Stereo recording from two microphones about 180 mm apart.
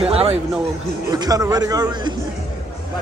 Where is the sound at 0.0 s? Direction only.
35° right (ahead or behind).